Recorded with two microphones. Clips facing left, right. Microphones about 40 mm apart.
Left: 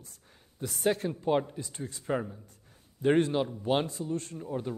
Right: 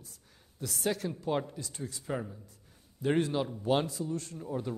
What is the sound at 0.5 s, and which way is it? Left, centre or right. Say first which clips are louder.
Speech: left 4 dB; left.